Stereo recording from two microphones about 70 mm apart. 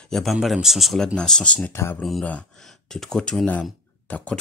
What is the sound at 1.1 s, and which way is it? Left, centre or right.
Speech, centre.